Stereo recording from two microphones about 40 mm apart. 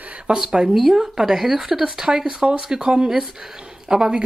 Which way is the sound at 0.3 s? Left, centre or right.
Right.